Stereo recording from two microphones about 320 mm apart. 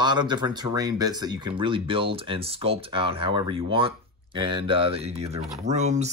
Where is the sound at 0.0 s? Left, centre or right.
Centre.